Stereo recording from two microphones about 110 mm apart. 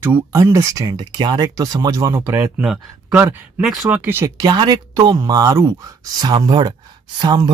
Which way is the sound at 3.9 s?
15° right (ahead or behind).